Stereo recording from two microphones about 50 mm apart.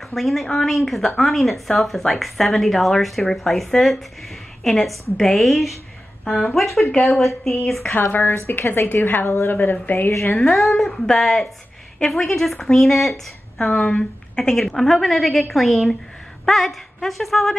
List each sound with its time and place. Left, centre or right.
0.1 s speech: centre
7.8 s a woman's voice: left
10.3 s speech: centre
13.6 s a woman's voice: centre
14.6 s speech: centre